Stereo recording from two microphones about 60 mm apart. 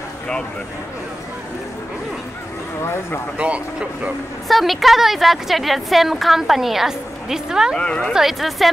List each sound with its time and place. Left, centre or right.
2.8 s speech: left
3.3 s speech: right
4.5 s a woman's voice: centre
7.7 s speech: centre
8.1 s a woman's voice: centre